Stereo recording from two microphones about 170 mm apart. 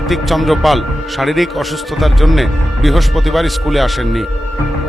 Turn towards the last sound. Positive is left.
turn(degrees=0)  # may be behind; listen again after turning